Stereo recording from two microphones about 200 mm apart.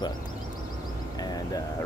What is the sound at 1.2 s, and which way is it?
Speech, 20° left (ahead or behind).